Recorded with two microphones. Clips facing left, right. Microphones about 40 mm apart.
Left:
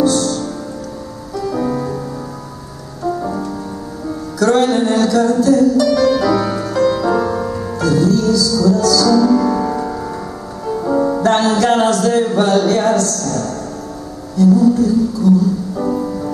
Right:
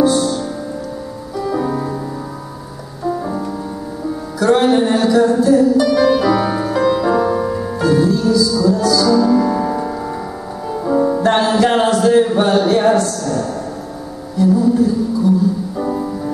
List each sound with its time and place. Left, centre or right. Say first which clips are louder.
0.0 s music: right 1 dB; centre
3.0 s rain: even; centre
4.4 s music: right 1 dB; centre
11.2 s a sound: left 2 dB; centre
14.3 s music: left 2 dB; centre